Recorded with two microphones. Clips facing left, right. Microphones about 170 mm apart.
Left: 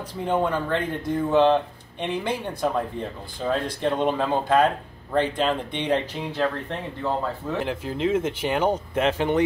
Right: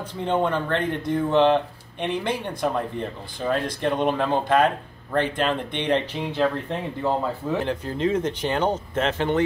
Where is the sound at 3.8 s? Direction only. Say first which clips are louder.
Even; 15° right (ahead or behind).